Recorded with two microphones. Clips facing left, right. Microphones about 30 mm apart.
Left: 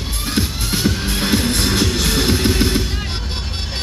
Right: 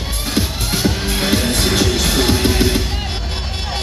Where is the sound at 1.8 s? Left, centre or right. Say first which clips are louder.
Right 2 dB; centre.